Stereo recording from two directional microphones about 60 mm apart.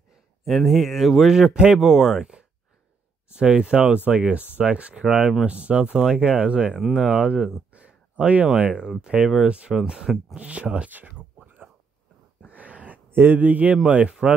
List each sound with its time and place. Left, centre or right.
0.5 s speech: centre
5.2 s speech: centre
5.5 s speech: right
7.7 s a sound: right
8.5 s speech: centre
12.4 s a sound: right
13.1 s speech: right; by 14.3 s centre